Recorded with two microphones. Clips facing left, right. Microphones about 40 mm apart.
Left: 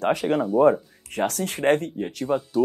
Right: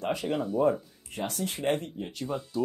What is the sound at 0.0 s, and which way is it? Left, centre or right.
Speech, left.